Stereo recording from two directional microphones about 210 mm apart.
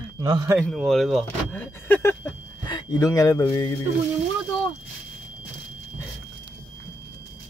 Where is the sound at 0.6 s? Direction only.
Centre (ahead or behind); by 3.7 s 20° left (ahead or behind).